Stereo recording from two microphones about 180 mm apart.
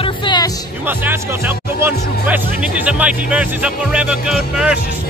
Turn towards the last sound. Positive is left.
turn(degrees=-5)  # may be behind; listen again after turning